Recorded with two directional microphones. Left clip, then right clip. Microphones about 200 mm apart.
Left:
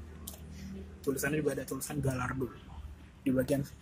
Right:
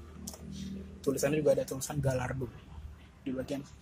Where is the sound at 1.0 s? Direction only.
20° right (ahead or behind).